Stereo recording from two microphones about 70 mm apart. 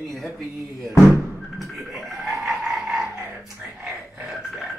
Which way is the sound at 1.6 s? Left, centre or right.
Centre.